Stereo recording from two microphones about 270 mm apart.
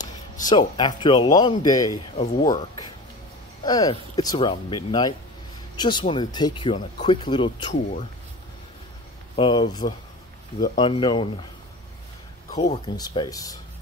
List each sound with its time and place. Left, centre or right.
0.5 s speech: centre
9.4 s speech: centre
12.4 s speech: left